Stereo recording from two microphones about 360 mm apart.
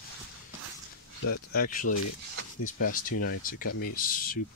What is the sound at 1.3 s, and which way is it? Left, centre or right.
Speech, left.